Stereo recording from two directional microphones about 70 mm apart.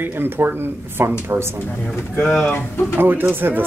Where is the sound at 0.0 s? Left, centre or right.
Right.